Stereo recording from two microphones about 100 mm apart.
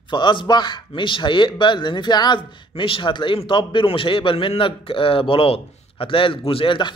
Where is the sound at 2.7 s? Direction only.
60° left (ahead or behind).